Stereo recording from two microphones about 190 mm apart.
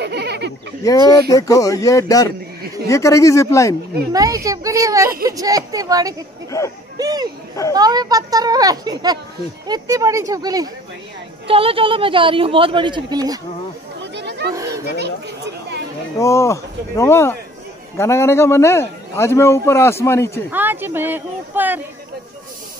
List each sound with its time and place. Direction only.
0.0 s a sound: 60° right (ahead or behind)
0.8 s a man's voice: 15° left (ahead or behind)
4.1 s speech: 20° right (ahead or behind)
11.4 s speech: 30° right (ahead or behind)
14.1 s a sound: 60° right (ahead or behind)
14.5 s children playing: 15° right (ahead or behind)
15.0 s chatter: 65° right (ahead or behind)
16.2 s a man's voice: 15° left (ahead or behind)
20.5 s speech: 10° right (ahead or behind)